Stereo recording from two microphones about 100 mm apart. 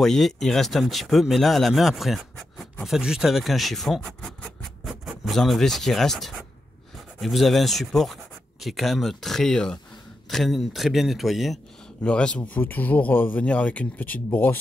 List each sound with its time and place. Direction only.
0.0 s speech: 5° left (ahead or behind)